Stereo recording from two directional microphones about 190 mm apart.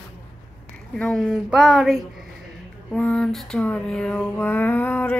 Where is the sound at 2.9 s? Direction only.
5° left (ahead or behind).